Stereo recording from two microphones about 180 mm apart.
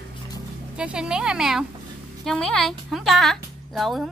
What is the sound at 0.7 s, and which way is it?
Speech, 5° right (ahead or behind).